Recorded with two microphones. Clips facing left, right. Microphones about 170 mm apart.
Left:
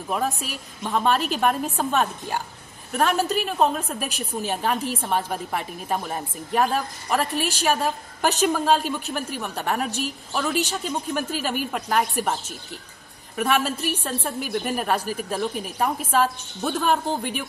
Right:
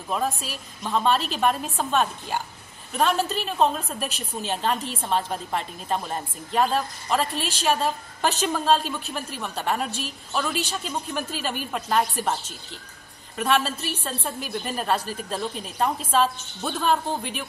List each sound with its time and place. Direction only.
0.1 s a woman's voice: 10° left (ahead or behind)
13.4 s a woman's voice: 10° left (ahead or behind)